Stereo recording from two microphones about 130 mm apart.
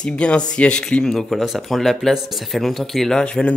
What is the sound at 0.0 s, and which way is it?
Speech, 10° left (ahead or behind).